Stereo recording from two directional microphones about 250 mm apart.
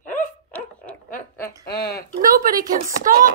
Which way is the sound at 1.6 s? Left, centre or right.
Left.